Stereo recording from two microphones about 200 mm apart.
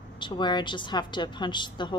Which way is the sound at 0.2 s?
20° left (ahead or behind).